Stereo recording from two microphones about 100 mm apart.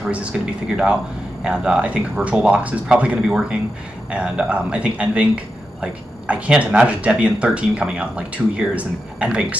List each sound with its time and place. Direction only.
0.0 s a man's voice: 10° right (ahead or behind)